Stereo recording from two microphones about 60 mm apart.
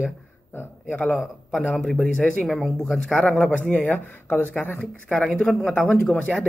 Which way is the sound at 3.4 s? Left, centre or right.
Left.